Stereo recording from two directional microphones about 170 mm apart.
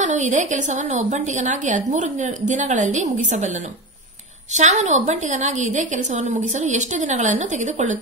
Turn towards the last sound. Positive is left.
turn(degrees=-45)  # may be behind; listen again after turning